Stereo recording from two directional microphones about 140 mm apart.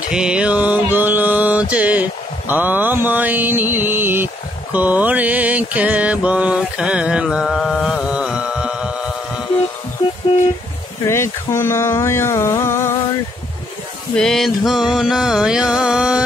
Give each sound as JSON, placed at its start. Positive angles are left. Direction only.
{"t": 0.1, "sound": "mantra", "side_deg": -5}
{"t": 11.1, "sound": "a sound", "side_deg": 20}
{"t": 14.1, "sound": "music", "side_deg": 5}